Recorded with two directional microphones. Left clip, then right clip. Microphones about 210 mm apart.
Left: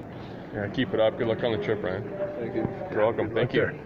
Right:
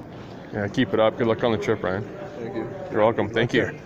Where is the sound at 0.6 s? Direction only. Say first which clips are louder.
Right 4 dB; 55° right (ahead or behind).